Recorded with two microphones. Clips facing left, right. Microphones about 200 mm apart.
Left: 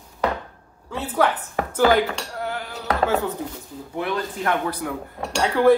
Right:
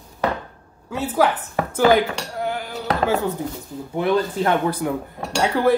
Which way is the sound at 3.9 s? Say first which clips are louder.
Right 6 dB; 25° right (ahead or behind).